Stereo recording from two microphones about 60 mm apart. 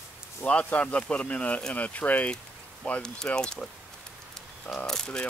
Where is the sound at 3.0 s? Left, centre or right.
Centre.